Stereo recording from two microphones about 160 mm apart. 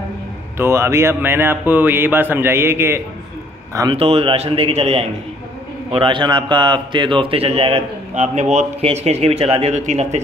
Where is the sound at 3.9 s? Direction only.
35° right (ahead or behind).